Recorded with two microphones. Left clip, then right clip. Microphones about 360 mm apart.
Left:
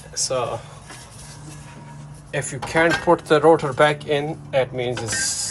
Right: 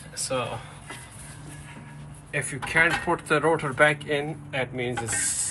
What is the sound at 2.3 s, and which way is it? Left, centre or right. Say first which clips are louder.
Speech: left 2 dB; left.